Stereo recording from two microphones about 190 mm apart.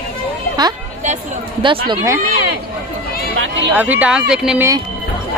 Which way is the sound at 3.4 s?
70° right (ahead or behind).